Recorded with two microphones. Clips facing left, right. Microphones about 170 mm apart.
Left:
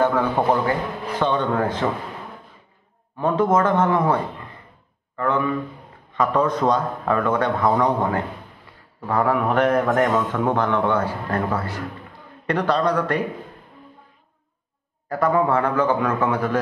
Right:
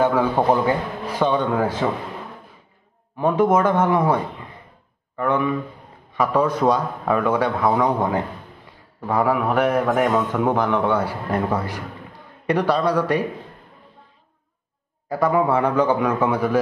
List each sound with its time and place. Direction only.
0.0 s a man's voice: 10° right (ahead or behind)
3.2 s a man's voice: 15° right (ahead or behind)
15.0 s a man's voice: 10° right (ahead or behind)